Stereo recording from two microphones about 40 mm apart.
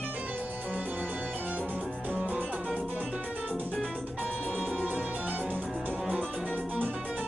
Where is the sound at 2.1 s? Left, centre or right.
Right.